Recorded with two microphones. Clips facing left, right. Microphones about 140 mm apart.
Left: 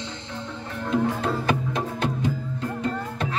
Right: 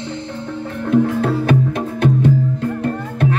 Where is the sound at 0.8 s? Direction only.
60° right (ahead or behind).